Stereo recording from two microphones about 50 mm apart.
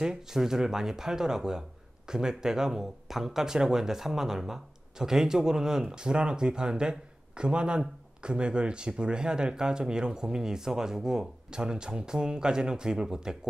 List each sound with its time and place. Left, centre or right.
0.0 s speech: centre